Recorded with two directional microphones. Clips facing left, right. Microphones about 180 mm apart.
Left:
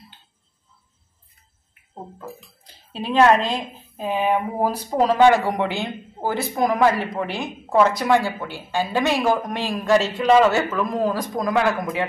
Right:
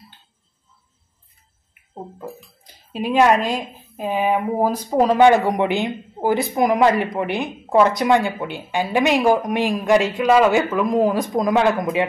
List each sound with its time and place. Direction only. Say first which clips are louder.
1.7 s speech: right 3 dB; 10° right (ahead or behind)